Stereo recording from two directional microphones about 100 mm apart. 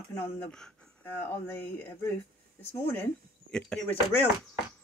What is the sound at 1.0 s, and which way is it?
Speech, 20° left (ahead or behind).